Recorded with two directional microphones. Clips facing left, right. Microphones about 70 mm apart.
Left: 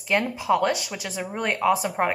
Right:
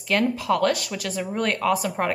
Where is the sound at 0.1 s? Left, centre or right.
Centre.